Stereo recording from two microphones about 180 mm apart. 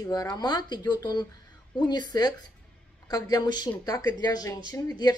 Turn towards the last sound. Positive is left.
turn(degrees=20)  # may be behind; listen again after turning